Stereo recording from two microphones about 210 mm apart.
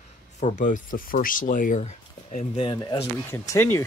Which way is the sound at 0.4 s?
40° left (ahead or behind).